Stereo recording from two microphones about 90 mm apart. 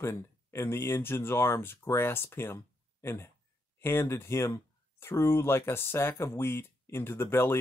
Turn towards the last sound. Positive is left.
turn(degrees=25)  # may be behind; listen again after turning